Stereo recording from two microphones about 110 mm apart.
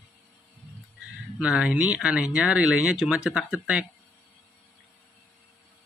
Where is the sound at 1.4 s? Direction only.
5° right (ahead or behind).